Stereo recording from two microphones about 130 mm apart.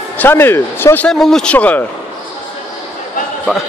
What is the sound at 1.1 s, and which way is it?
Speech, 5° left (ahead or behind).